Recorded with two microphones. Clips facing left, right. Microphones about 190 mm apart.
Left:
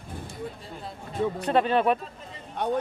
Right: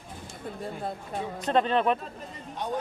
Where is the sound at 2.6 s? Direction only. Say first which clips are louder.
Left 5 dB; 60° left (ahead or behind).